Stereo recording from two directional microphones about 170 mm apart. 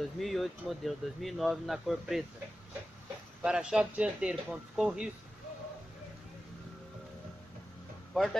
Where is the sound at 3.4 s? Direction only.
5° right (ahead or behind).